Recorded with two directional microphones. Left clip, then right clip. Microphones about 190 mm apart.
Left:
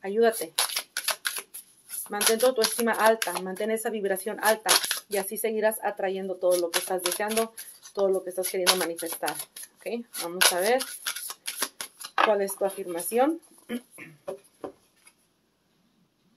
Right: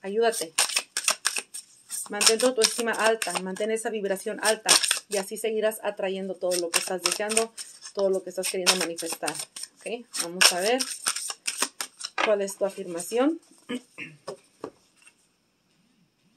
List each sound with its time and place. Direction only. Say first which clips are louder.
0.0 s shuffling cards: left 1 dB; 25° right (ahead or behind)
2.0 s speech: right 1 dB; 20° right (ahead or behind)
11.4 s a sound: right 3 dB; 15° right (ahead or behind)